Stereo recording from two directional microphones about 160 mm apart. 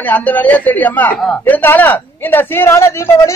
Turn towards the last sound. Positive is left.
turn(degrees=15)  # may be behind; listen again after turning